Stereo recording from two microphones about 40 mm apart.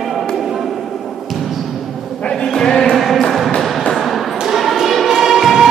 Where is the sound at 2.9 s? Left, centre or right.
Centre.